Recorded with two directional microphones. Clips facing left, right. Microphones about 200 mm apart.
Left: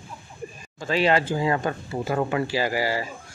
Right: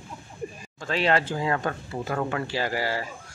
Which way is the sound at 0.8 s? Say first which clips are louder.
Left 3 dB; 5° left (ahead or behind).